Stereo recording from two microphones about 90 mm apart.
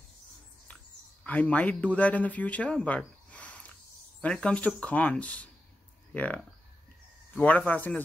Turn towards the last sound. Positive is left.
turn(degrees=20)  # may be behind; listen again after turning